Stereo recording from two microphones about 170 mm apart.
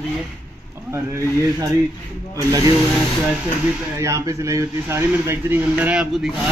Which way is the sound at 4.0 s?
15° right (ahead or behind).